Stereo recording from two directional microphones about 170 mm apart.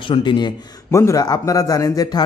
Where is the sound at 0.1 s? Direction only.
25° left (ahead or behind).